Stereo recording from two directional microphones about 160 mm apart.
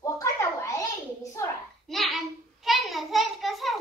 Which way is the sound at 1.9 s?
Centre (ahead or behind).